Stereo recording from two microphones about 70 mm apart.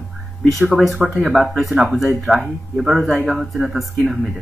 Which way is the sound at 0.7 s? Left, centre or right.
Centre.